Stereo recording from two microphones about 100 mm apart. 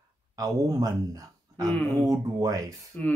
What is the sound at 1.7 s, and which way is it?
Speech, 10° left (ahead or behind).